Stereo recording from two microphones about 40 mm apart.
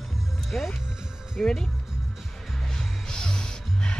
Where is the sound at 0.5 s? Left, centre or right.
Left.